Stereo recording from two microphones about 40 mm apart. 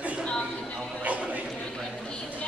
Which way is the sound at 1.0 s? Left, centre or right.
Right.